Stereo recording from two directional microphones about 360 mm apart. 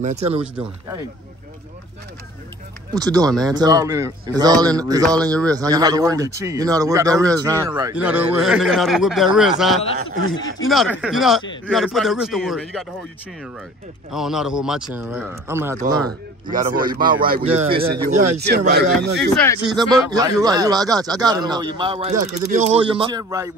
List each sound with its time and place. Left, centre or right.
0.0 s speech: centre
2.9 s speech: centre
10.0 s speech: left
10.7 s speech: centre
14.1 s speech: centre
16.4 s speech: right
19.6 s speech: centre